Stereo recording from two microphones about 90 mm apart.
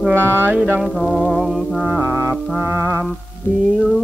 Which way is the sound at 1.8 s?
25° right (ahead or behind).